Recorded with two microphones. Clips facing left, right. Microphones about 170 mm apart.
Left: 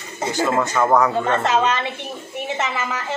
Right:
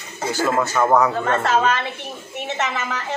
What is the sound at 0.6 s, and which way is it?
Speech, 5° right (ahead or behind).